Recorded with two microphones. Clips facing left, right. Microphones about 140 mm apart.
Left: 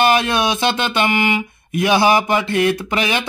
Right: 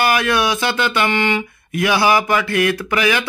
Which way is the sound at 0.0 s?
25° left (ahead or behind).